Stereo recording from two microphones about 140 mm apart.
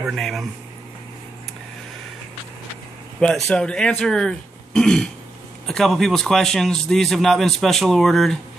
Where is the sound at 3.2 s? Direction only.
5° left (ahead or behind).